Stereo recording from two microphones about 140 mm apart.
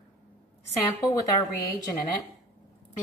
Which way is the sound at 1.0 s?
25° left (ahead or behind).